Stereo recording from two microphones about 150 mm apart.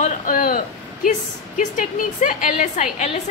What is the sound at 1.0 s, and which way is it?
A woman's voice, 55° left (ahead or behind).